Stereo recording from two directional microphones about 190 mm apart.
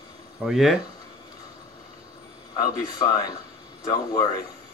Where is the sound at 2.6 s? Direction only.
20° left (ahead or behind).